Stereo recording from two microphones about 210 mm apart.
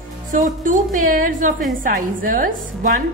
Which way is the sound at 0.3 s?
40° right (ahead or behind).